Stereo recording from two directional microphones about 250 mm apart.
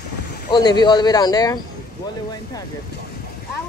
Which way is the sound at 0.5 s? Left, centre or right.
Centre.